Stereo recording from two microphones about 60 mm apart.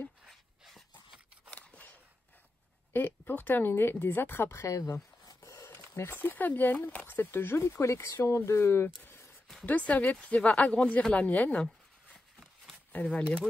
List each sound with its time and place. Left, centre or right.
1.5 s a sound: left
2.9 s speech: left
4.5 s speech: left
5.2 s a sound: left
5.6 s a sound: left
6.1 s speech: left
7.1 s speech: left
8.8 s speech: left
12.9 s speech: centre